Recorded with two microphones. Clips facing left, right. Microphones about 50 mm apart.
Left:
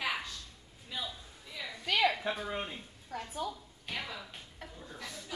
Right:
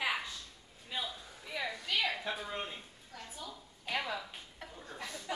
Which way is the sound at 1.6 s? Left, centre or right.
Right.